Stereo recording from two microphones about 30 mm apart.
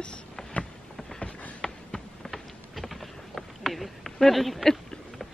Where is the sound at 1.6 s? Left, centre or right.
Centre.